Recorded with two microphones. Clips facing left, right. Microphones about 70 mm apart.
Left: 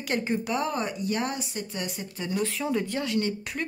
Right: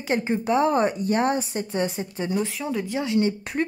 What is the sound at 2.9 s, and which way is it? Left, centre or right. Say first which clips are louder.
Speech: right 5 dB; right.